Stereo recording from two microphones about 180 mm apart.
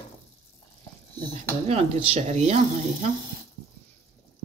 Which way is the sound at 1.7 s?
35° right (ahead or behind).